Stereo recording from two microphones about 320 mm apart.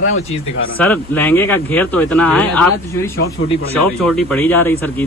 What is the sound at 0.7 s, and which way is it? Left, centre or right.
Speech, centre.